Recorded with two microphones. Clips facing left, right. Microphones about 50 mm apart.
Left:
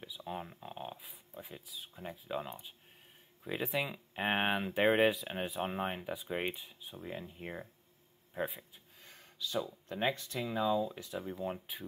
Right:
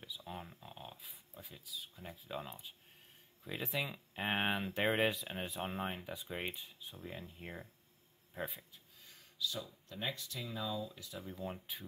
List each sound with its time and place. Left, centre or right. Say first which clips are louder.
0.0 s speech: left 5 dB; centre
2.0 s speech: left 6 dB; centre
9.0 s a sound: right 1 dB; left
9.8 s speech: left 8 dB; left
11.1 s speech: left 5 dB; centre